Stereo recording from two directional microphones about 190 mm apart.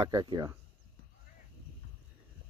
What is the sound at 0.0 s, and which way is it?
Speech, 20° right (ahead or behind).